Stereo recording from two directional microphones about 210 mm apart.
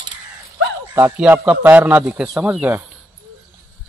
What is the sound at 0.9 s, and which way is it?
Speech, 10° right (ahead or behind).